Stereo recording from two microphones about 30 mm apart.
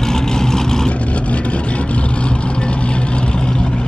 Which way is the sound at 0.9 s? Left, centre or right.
Left.